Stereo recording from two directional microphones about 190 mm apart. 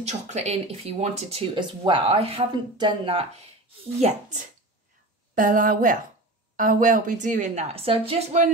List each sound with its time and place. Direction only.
0.0 s speech: 35° right (ahead or behind)
4.0 s speech: 40° right (ahead or behind)